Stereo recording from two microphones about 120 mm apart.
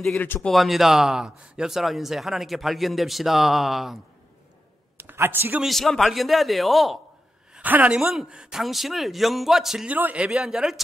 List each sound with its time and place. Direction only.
0.2 s speech: 15° left (ahead or behind)
0.5 s speech: centre (ahead or behind)
4.9 s a sound: 20° right (ahead or behind)
5.6 s speech: centre (ahead or behind)
7.5 s speech: 15° right (ahead or behind)